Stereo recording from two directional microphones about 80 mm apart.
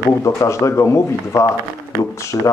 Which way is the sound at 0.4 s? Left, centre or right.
Left.